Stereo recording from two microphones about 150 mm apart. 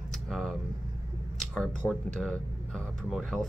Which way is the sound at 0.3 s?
5° left (ahead or behind).